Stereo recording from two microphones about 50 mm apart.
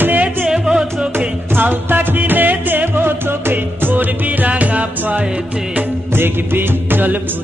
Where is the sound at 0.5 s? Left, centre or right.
Centre.